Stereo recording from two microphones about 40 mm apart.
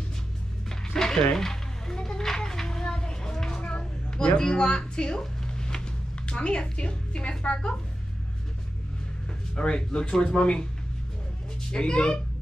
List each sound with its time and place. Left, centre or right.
0.7 s a sound: centre
6.2 s a woman's voice: left
9.6 s a woman's voice: left
11.7 s a woman's voice: left